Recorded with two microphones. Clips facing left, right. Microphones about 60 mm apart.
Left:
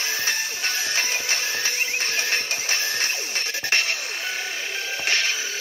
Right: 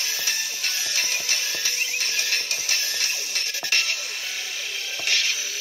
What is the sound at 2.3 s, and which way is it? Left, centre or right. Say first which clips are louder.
Music: left 3 dB; left.